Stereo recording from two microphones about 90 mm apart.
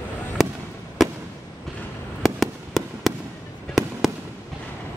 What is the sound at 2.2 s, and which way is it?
Fireworks, centre (ahead or behind).